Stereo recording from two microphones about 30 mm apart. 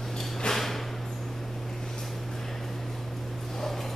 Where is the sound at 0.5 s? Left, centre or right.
Centre.